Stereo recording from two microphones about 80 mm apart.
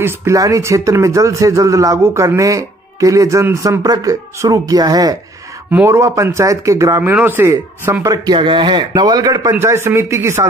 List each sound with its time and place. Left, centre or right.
0.0 s speech: right
5.9 s speech: right
7.0 s speech: right
7.4 s speech: right
8.3 s a man's voice: right